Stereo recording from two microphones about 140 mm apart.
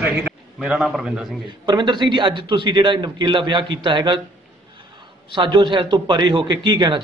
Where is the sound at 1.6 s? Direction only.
35° right (ahead or behind).